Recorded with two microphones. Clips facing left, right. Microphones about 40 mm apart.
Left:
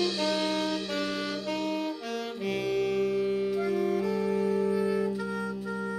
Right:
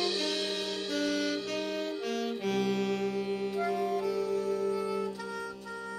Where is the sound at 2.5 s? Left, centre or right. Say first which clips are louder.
Left 3 dB; centre.